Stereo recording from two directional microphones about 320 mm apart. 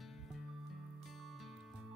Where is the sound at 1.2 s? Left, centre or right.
Centre.